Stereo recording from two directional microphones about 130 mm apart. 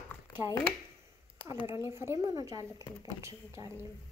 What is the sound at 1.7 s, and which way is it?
Speech, 20° right (ahead or behind).